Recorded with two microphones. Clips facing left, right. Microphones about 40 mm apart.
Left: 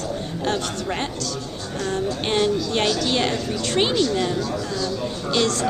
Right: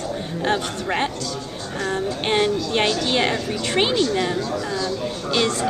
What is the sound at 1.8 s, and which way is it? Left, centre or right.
Speech, centre.